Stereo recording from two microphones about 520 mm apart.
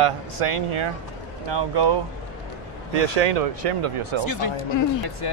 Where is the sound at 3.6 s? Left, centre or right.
Right.